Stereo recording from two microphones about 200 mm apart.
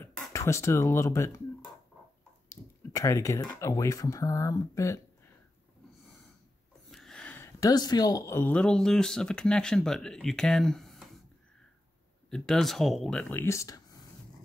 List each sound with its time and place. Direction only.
0.0 s speech: 15° left (ahead or behind)
2.5 s speech: 15° left (ahead or behind)
6.9 s speech: centre (ahead or behind)
12.3 s speech: 5° left (ahead or behind)